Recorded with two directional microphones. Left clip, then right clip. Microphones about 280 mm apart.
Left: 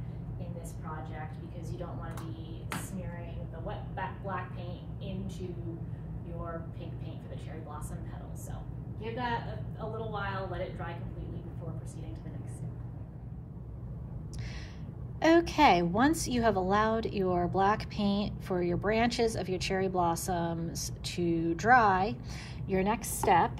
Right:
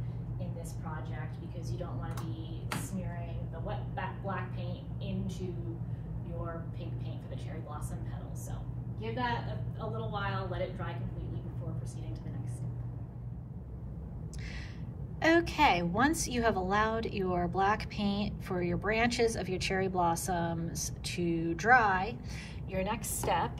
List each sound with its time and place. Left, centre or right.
3.6 s a woman's voice: centre
9.2 s a woman's voice: centre
15.1 s a woman's voice: centre